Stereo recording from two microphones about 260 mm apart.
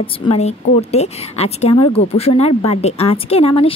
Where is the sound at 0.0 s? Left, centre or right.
Left.